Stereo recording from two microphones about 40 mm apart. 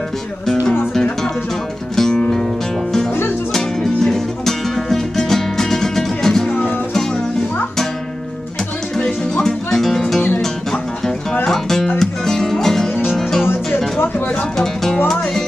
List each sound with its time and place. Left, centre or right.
2.0 s music: centre
4.0 s music: centre
8.9 s music: centre
14.6 s music: centre